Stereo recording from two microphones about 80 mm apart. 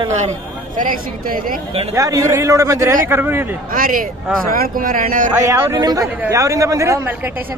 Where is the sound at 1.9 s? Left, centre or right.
Right.